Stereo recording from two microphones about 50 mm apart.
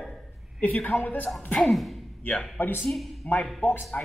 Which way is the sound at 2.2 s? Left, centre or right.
Left.